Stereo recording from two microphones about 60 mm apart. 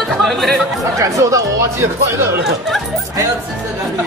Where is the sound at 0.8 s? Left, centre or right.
Right.